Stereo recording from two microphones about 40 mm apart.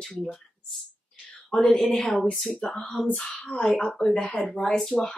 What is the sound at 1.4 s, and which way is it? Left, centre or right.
Speech, centre.